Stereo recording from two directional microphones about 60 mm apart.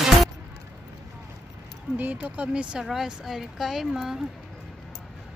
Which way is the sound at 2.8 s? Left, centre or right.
Centre.